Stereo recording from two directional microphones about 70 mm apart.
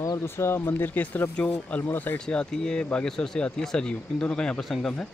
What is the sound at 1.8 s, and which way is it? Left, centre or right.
Speech, left.